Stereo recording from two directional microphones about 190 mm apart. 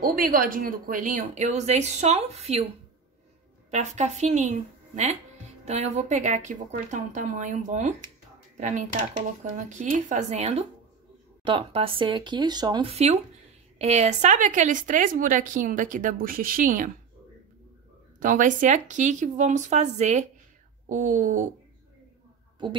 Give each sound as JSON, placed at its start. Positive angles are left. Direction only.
{"t": 0.0, "sound": "speech", "side_deg": -50}
{"t": 3.7, "sound": "a woman's voice", "side_deg": -40}
{"t": 18.2, "sound": "a woman's voice", "side_deg": -45}